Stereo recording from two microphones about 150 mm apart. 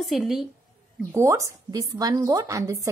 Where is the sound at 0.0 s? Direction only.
Centre (ahead or behind).